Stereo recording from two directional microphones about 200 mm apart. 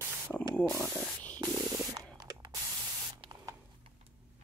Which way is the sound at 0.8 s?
Centre (ahead or behind).